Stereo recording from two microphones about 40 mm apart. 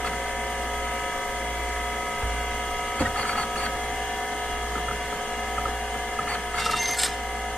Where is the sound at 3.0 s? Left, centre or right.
Left.